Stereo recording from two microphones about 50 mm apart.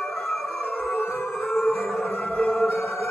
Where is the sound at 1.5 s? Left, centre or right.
Centre.